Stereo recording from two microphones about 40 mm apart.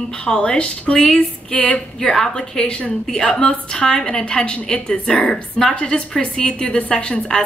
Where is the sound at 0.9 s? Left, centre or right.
Centre.